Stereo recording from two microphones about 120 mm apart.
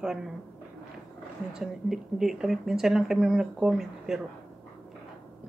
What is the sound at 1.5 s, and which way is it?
Speech, 5° right (ahead or behind).